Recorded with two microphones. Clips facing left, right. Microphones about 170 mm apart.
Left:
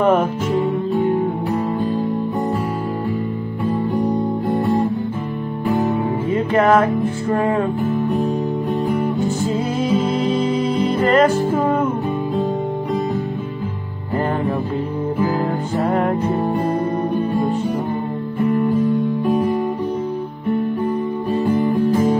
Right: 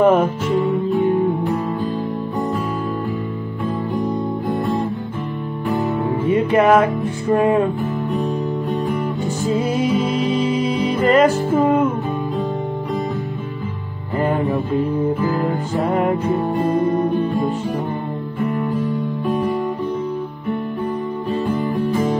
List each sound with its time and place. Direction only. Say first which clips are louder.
5.7 s music: left 2 dB; centre (ahead or behind)
6.2 s music: right 2 dB; 15° right (ahead or behind)
7.8 s music: left 3 dB; centre (ahead or behind)
10.4 s music: left 1 dB; 10° right (ahead or behind)
15.4 s music: even; centre (ahead or behind)
18.8 s music: left 4 dB; centre (ahead or behind)